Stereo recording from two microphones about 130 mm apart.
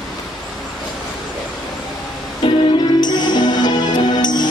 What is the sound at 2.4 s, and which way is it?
Music, 40° left (ahead or behind).